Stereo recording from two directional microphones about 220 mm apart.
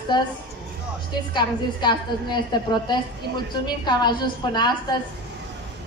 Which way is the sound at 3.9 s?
20° left (ahead or behind).